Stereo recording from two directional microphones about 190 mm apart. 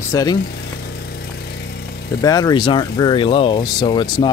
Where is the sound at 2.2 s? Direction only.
20° left (ahead or behind).